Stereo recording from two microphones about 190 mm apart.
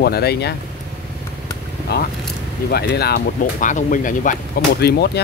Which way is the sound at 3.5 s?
40° left (ahead or behind).